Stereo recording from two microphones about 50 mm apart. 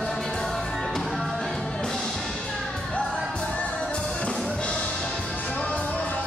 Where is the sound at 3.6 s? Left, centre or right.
Left.